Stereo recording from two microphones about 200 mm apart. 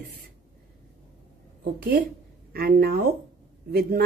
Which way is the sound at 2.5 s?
50° right (ahead or behind).